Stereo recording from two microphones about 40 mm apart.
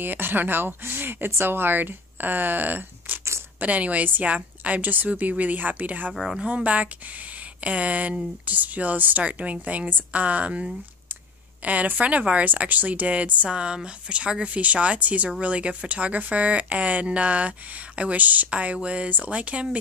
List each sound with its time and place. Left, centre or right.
0.0 s speech: right
6.2 s speech: centre
6.5 s speech: right